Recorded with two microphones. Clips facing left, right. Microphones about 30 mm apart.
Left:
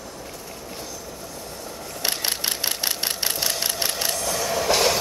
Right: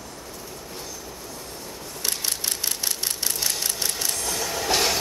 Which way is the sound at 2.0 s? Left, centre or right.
Left.